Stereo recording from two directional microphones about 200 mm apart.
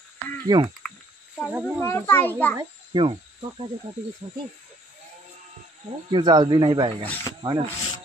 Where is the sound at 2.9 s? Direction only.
25° right (ahead or behind).